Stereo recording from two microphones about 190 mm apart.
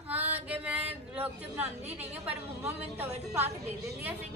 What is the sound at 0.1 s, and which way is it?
Female singing, 10° right (ahead or behind).